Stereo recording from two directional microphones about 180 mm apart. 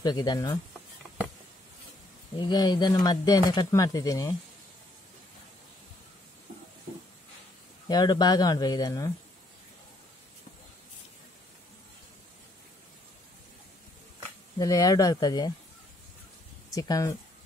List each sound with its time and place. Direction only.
0.0 s speech: 20° left (ahead or behind)
2.3 s speech: 25° left (ahead or behind)
7.9 s speech: 25° left (ahead or behind)
14.6 s speech: 20° left (ahead or behind)
16.7 s speech: 20° left (ahead or behind)